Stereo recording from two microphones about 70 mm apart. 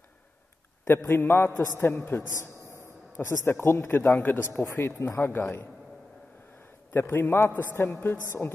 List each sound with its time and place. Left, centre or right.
0.8 s a man's voice: left
6.9 s a man's voice: left